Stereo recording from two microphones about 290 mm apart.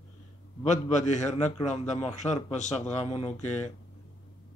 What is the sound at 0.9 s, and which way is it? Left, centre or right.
Speech, left.